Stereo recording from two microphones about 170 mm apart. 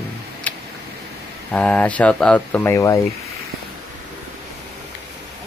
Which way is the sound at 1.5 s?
5° left (ahead or behind).